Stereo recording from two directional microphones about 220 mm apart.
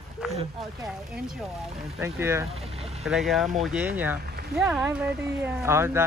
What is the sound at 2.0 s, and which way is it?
Speech, 10° right (ahead or behind).